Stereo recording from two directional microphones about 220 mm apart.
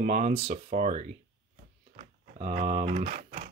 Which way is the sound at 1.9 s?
35° right (ahead or behind).